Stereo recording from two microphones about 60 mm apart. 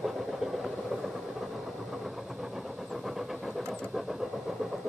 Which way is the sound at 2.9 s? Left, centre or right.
Centre.